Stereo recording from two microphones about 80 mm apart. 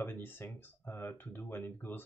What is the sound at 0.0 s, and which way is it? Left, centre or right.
Speech, left.